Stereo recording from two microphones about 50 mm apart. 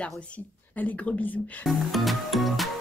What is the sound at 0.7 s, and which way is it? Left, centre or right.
Speech, left.